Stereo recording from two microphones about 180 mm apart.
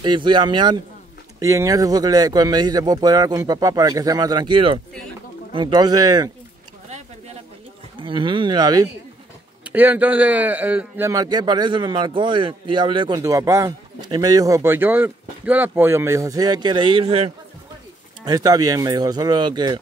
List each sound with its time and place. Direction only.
0.0 s a man's voice: 25° right (ahead or behind)
8.0 s a man's voice: 25° right (ahead or behind)
9.7 s a man's voice: 10° right (ahead or behind); by 17.3 s 35° right (ahead or behind)
18.2 s a man's voice: 20° right (ahead or behind)